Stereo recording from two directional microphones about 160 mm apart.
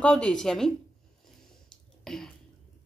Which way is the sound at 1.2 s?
Centre (ahead or behind).